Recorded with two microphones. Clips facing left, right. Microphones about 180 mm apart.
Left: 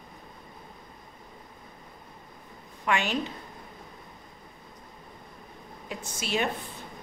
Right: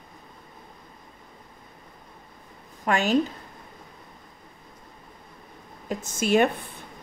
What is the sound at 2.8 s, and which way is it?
Speech, 40° right (ahead or behind).